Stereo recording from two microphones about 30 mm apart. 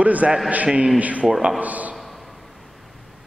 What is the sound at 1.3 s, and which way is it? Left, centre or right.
Speech, right.